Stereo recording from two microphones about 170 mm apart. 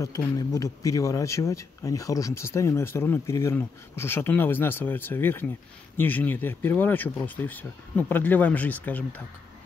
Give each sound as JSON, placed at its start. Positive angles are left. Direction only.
{"t": 0.0, "sound": "a man's voice", "side_deg": 20}